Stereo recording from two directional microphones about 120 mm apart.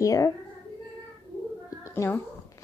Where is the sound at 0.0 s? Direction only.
25° left (ahead or behind).